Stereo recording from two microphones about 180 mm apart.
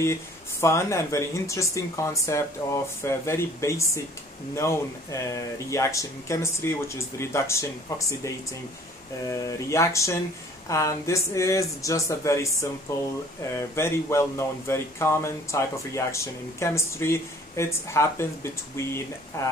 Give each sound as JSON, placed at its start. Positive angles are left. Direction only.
{"t": 0.0, "sound": "speech", "side_deg": 15}